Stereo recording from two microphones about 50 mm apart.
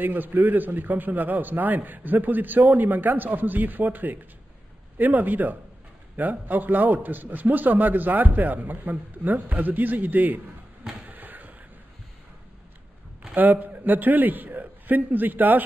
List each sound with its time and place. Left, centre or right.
0.0 s a man's voice: right
11.1 s a sound: right
13.3 s a man's voice: right